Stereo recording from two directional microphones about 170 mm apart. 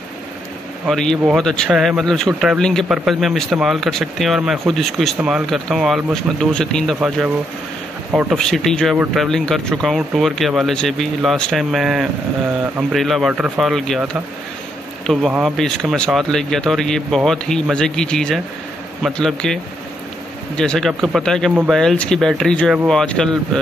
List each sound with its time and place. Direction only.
0.8 s speech: 5° left (ahead or behind)
8.4 s speech: 5° left (ahead or behind)